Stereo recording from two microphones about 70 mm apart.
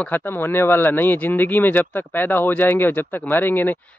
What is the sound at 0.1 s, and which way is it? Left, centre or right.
Speech, left.